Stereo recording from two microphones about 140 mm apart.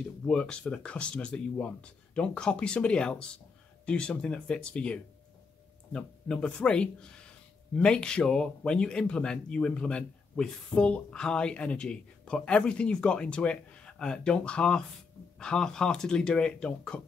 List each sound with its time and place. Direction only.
0.3 s speech: 5° left (ahead or behind)